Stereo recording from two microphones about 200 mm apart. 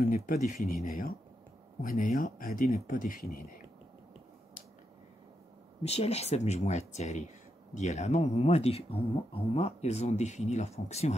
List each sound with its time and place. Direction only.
0.0 s speech: 45° left (ahead or behind)
1.8 s speech: 40° left (ahead or behind)
5.8 s speech: 30° left (ahead or behind)